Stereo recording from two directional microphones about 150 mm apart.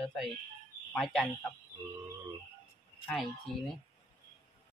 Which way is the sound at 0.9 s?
Centre (ahead or behind).